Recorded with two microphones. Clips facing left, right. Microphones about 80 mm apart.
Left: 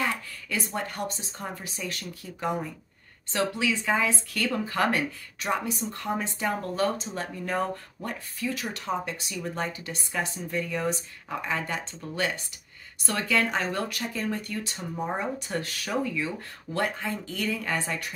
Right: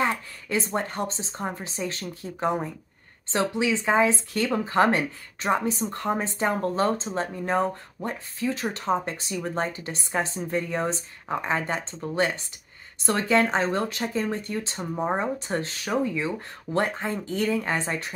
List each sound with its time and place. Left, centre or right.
0.0 s speech: right